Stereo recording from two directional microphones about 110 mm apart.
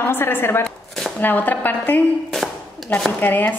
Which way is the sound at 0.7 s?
Centre (ahead or behind).